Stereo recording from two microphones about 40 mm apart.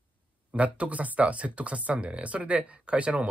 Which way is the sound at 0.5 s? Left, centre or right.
Right.